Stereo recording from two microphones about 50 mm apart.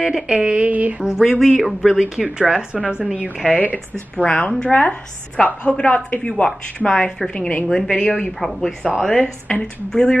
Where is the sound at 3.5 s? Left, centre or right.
Left.